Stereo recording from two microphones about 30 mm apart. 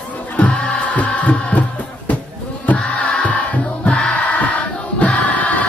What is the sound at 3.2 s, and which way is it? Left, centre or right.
Music, left.